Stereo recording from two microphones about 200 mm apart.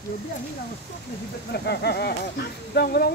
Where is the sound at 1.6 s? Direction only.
55° left (ahead or behind).